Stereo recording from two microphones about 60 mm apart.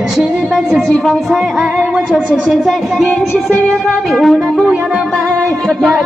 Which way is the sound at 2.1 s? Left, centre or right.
Centre.